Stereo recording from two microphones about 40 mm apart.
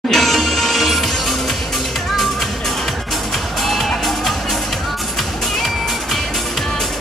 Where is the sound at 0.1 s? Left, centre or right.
Centre.